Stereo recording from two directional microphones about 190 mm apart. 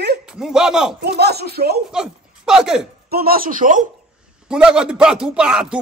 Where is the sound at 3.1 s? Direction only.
50° right (ahead or behind).